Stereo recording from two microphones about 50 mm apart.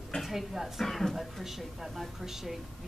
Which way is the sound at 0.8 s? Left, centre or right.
Centre.